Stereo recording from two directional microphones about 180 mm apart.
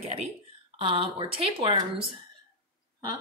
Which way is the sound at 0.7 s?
30° right (ahead or behind).